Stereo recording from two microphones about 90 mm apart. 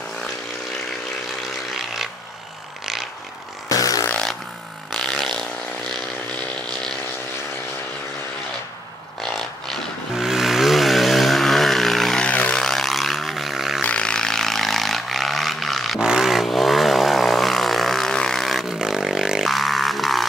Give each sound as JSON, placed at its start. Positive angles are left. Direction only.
{"t": 2.8, "sound": "vehicle", "side_deg": 0}
{"t": 3.6, "sound": "a sound", "side_deg": 40}
{"t": 4.1, "sound": "a sound", "side_deg": 5}
{"t": 6.7, "sound": "vehicle", "side_deg": 5}
{"t": 9.2, "sound": "vehicle", "side_deg": 5}
{"t": 12.3, "sound": "vehicle", "side_deg": 15}
{"t": 13.8, "sound": "vehicle", "side_deg": 10}